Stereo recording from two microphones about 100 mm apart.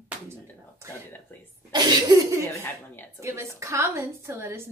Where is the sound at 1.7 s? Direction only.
40° right (ahead or behind).